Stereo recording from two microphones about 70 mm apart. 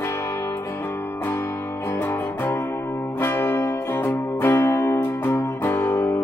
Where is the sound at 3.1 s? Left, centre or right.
Left.